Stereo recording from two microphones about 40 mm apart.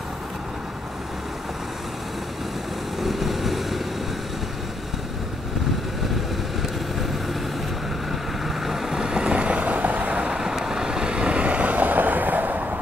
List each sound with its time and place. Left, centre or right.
3.0 s vehicle: centre
8.6 s vehicle: centre; by 10.3 s right
10.3 s vehicle: centre; by 12.6 s right